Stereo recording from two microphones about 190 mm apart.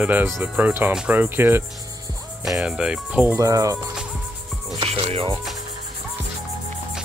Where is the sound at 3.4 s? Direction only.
15° right (ahead or behind).